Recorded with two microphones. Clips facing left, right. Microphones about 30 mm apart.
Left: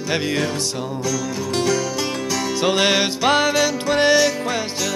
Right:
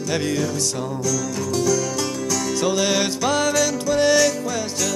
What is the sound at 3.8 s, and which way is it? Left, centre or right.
Music, left.